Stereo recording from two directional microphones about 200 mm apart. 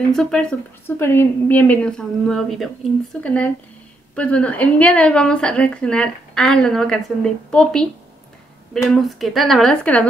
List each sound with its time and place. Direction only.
0.1 s a woman's voice: 5° left (ahead or behind)
8.9 s a woman's voice: centre (ahead or behind)